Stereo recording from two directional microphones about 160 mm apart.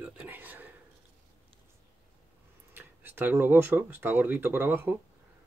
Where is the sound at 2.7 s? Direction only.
10° right (ahead or behind).